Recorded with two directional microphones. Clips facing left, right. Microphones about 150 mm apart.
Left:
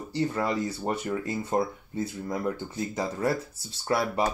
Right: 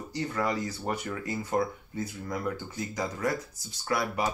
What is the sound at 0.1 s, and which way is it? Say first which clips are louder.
Speech: left 3 dB; 30° left (ahead or behind).